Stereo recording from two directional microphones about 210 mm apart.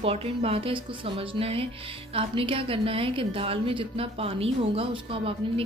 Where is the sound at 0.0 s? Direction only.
25° right (ahead or behind).